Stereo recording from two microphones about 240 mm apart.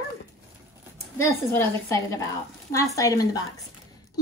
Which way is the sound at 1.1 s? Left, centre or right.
Centre.